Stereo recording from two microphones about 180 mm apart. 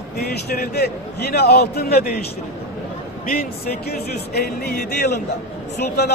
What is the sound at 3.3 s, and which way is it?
Speech, 60° left (ahead or behind).